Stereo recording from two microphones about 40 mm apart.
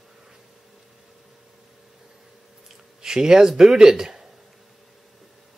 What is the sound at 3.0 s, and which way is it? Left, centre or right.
Speech, centre.